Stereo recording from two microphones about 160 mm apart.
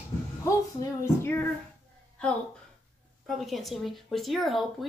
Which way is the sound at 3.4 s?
Centre (ahead or behind).